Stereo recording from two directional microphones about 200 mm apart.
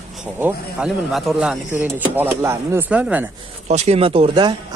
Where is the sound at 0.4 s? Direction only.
5° right (ahead or behind).